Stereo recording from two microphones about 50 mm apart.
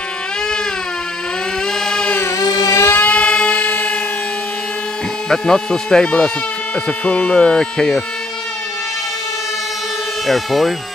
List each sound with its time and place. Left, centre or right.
2.2 s a sound: left
3.0 s music: left
5.3 s speech: centre
10.2 s speech: centre